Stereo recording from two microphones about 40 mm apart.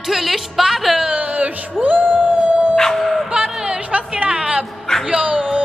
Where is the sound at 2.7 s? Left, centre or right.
Centre.